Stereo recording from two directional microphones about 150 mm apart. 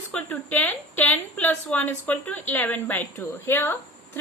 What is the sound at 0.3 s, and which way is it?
A woman's voice, 10° left (ahead or behind).